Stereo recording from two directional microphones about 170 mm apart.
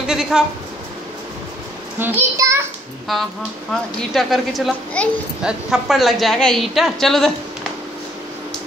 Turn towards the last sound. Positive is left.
turn(degrees=0)  # may be behind; listen again after turning